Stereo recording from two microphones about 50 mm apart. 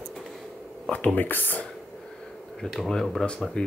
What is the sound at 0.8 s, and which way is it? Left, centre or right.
Speech, left.